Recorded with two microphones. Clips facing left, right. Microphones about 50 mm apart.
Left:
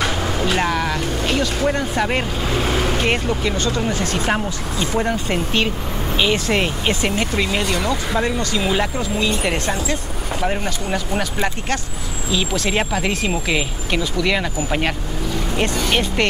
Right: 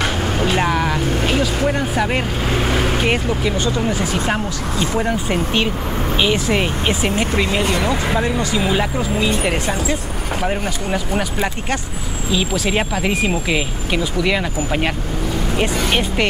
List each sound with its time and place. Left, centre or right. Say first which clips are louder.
0.6 s speech: right 2 dB; centre
3.5 s speech: right 2 dB; centre